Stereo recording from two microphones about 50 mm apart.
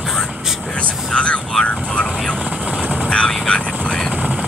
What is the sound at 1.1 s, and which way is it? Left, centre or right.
Speech, left.